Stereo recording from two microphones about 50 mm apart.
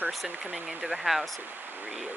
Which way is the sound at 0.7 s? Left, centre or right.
Centre.